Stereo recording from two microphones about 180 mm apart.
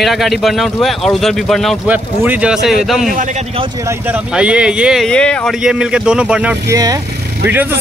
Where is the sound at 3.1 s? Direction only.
45° right (ahead or behind).